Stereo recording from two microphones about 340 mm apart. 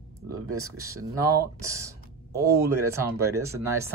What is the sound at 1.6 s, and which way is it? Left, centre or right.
Speech, centre.